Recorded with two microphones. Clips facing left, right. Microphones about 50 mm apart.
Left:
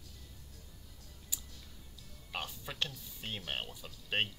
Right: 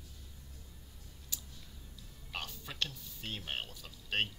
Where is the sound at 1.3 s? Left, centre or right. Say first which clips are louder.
Even; centre.